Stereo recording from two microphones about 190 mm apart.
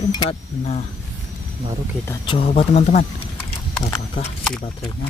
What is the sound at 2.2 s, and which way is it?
Speech, 30° left (ahead or behind).